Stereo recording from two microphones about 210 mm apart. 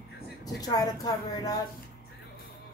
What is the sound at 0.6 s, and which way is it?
Speech, 20° left (ahead or behind).